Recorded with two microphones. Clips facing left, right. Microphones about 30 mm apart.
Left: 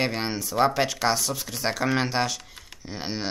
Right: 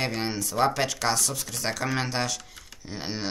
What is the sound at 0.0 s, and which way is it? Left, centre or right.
Speech, centre.